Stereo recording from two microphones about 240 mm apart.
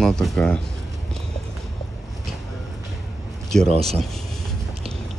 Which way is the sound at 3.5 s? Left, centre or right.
Centre.